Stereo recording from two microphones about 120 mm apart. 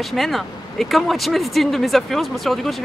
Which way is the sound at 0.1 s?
Centre (ahead or behind).